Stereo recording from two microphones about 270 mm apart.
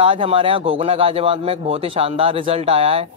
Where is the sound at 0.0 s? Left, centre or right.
Centre.